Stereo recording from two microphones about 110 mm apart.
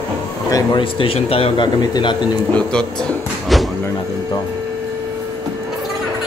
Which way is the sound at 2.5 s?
10° left (ahead or behind).